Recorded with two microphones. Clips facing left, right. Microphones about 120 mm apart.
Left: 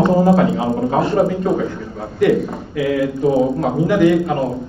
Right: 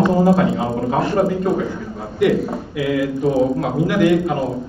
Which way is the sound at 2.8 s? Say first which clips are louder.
Left 2 dB; centre (ahead or behind).